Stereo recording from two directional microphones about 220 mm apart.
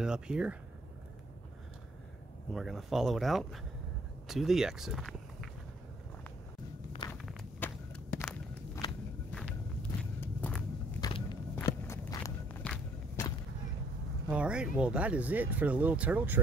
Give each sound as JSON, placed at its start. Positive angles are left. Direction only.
{"t": 0.0, "sound": "speech", "side_deg": -5}
{"t": 2.5, "sound": "speech", "side_deg": 0}
{"t": 7.1, "sound": "walk", "side_deg": 5}
{"t": 11.0, "sound": "walk", "side_deg": 20}
{"t": 14.3, "sound": "speech", "side_deg": -5}